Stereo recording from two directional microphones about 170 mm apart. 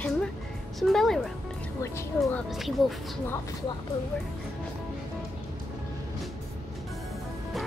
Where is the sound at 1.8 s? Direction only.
15° left (ahead or behind).